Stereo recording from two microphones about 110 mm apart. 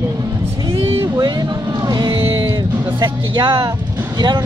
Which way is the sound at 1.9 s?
40° right (ahead or behind).